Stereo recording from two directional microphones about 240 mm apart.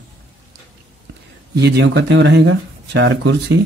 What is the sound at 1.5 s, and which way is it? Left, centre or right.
Speech, right.